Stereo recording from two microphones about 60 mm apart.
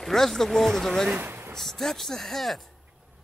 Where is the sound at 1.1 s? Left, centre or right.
Right.